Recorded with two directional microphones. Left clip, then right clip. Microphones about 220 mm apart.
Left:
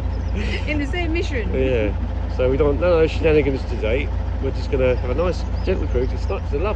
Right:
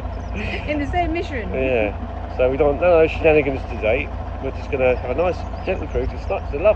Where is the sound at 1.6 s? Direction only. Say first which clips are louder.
Right 2 dB; 60° left (ahead or behind).